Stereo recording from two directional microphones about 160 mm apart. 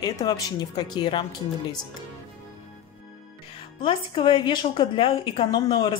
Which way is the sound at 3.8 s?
35° left (ahead or behind).